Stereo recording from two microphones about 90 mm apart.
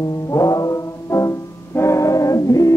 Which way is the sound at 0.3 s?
40° left (ahead or behind).